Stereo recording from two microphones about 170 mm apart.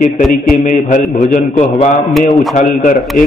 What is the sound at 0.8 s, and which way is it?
A man's voice, 50° left (ahead or behind).